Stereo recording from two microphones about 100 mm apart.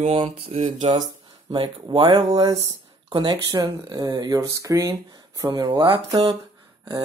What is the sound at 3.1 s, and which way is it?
Speech, 45° right (ahead or behind).